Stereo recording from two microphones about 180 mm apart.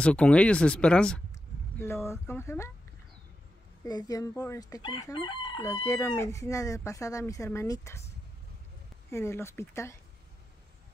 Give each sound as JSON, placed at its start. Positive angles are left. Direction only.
{"t": 0.0, "sound": "speech", "side_deg": 5}
{"t": 3.8, "sound": "crowing", "side_deg": 20}
{"t": 5.7, "sound": "speech", "side_deg": 15}
{"t": 9.1, "sound": "speech", "side_deg": 15}